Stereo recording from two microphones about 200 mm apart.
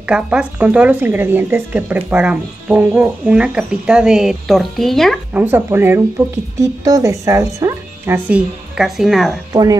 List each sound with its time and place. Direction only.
0.1 s speech: 5° right (ahead or behind)
5.4 s speech: 10° right (ahead or behind)
9.5 s speech: 15° right (ahead or behind)